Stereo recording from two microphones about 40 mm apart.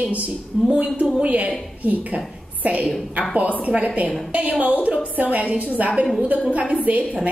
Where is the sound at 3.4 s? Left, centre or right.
Right.